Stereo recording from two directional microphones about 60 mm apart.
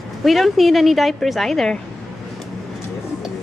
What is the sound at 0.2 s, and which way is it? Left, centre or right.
Speech, centre.